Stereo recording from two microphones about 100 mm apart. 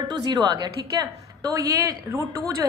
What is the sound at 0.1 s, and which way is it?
Speech, 45° right (ahead or behind).